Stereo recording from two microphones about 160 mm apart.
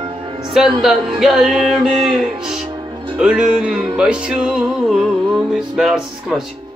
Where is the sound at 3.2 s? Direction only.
5° right (ahead or behind).